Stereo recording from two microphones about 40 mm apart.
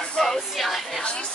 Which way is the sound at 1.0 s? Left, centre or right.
Left.